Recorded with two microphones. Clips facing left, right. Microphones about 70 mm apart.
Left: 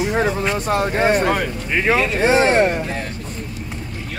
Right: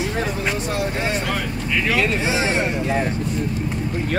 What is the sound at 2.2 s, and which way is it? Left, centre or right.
Speech, left.